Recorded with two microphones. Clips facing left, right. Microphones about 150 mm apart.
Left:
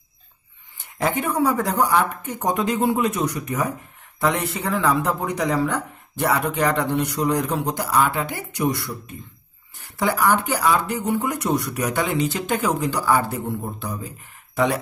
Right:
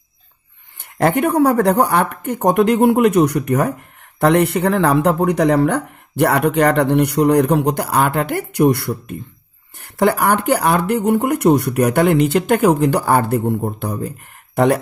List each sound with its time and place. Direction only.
0.7 s speech: 60° right (ahead or behind)